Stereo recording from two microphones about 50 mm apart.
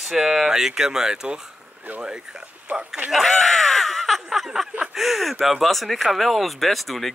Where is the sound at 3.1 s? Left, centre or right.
Centre.